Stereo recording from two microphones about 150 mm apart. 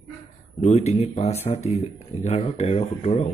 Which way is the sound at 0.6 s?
50° left (ahead or behind).